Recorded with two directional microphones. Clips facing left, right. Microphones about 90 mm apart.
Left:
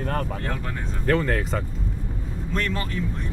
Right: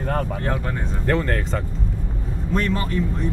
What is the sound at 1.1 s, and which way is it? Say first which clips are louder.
Speech: even; centre (ahead or behind).